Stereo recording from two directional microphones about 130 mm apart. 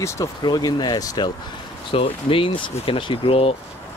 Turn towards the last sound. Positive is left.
turn(degrees=50)  # may be behind; listen again after turning